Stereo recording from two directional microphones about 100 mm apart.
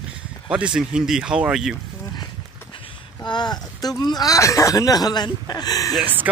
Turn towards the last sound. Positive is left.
turn(degrees=40)  # may be behind; listen again after turning